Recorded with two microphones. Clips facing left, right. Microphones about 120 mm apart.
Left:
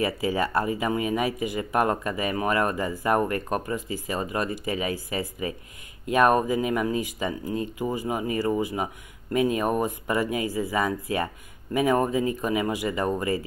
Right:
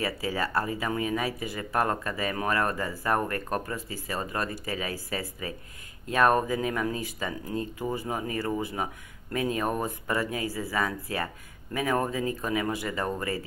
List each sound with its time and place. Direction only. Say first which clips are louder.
0.0 s speech: left 5 dB; 20° left (ahead or behind)